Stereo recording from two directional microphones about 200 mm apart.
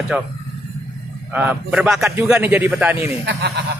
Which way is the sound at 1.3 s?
10° right (ahead or behind).